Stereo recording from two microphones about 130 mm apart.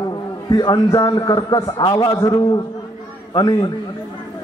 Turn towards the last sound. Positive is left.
turn(degrees=35)  # may be behind; listen again after turning